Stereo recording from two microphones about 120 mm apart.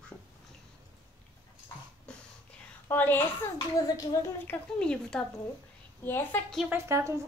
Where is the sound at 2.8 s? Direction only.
15° left (ahead or behind).